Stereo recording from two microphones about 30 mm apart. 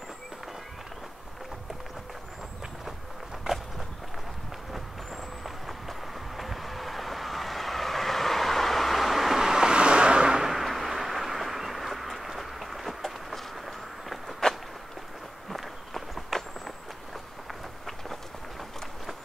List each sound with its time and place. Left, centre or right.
4.7 s vehicle: centre
9.3 s vehicle: centre
9.6 s vehicle: right
10.4 s vehicle: centre
14.4 s walk: left
15.5 s walk: centre